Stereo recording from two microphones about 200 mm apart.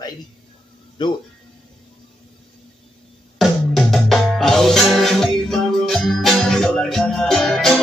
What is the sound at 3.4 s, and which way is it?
Music, centre (ahead or behind).